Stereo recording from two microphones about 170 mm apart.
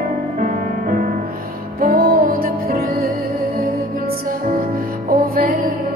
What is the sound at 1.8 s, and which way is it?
Music, 60° right (ahead or behind).